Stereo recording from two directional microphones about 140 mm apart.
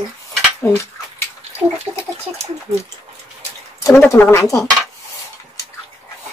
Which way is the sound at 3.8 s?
20° left (ahead or behind).